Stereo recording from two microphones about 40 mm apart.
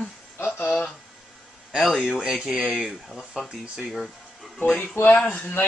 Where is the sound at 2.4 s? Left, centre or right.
Centre.